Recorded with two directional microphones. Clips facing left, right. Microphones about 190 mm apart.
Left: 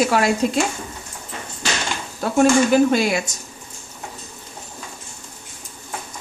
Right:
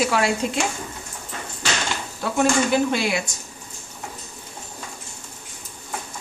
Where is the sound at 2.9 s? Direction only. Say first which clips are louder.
Left 4 dB; 40° left (ahead or behind).